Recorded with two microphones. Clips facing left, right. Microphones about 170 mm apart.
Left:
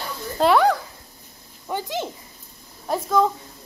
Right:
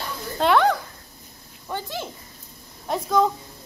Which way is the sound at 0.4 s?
Centre (ahead or behind).